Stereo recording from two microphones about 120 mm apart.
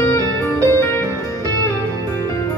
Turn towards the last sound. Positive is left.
turn(degrees=20)  # may be behind; listen again after turning